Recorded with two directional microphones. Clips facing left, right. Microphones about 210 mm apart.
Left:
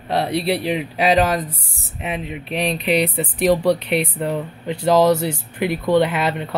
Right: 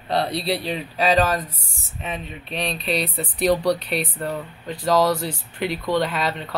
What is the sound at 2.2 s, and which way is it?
Speech, 85° left.